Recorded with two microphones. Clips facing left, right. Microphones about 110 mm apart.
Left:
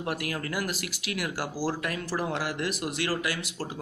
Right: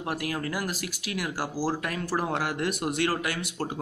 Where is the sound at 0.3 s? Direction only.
35° right (ahead or behind).